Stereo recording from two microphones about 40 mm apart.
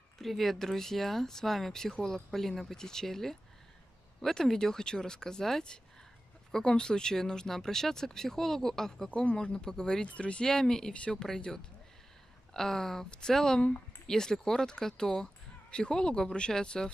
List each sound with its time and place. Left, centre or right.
0.2 s speech: centre
9.2 s speech: left
10.0 s speech: left
10.4 s speech: centre
12.5 s speech: centre